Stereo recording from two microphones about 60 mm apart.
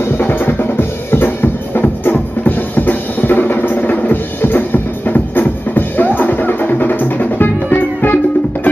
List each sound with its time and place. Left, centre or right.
0.0 s drum kit: left
5.8 s music: left